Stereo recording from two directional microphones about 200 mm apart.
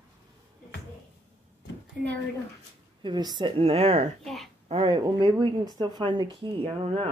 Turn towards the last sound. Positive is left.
turn(degrees=-30)  # may be behind; listen again after turning